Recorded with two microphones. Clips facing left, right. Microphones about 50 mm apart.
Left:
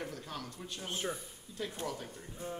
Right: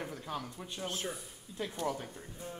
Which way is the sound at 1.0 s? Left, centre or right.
Centre.